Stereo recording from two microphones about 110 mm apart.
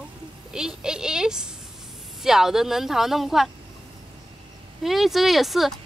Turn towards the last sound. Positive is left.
turn(degrees=0)  # may be behind; listen again after turning